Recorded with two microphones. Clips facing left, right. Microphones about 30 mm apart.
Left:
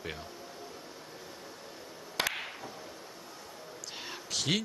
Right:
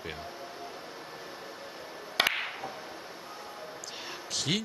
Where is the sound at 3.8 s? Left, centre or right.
Centre.